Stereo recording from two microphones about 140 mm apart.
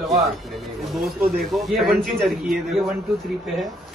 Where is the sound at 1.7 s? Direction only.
Centre (ahead or behind).